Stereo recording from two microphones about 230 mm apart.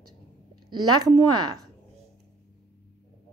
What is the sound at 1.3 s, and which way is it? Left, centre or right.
Speech, right.